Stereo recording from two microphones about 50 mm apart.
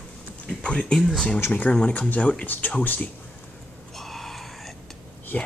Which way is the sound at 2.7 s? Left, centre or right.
Left.